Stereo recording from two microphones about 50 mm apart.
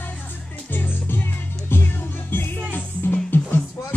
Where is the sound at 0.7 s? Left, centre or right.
Left.